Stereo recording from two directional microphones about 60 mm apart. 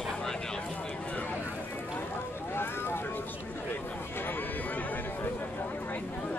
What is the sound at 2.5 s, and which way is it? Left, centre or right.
Vehicle, left.